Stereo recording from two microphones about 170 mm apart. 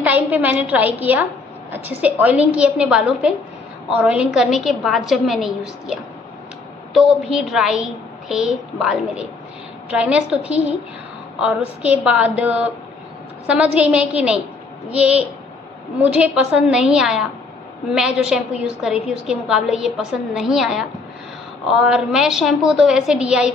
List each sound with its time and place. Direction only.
0.0 s a woman's voice: 10° right (ahead or behind)